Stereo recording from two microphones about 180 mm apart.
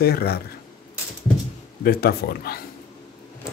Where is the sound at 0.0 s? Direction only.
60° left (ahead or behind).